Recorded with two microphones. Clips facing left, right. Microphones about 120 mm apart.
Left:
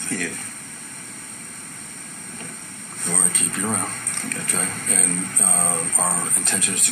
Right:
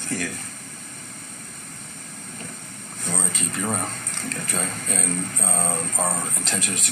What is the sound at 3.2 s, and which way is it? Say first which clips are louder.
Speech: right 1 dB; 25° right (ahead or behind).